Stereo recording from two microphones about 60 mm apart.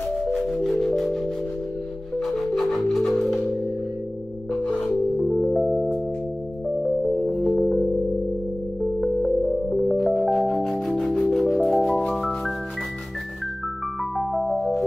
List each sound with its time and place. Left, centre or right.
0.3 s music: centre
2.1 s music: centre
4.6 s music: centre
5.3 s music: centre
9.0 s music: centre
14.1 s music: centre